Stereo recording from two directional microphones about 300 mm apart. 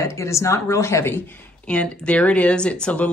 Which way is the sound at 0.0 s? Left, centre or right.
Centre.